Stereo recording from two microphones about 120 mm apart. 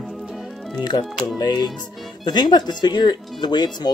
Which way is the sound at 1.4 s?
35° left (ahead or behind).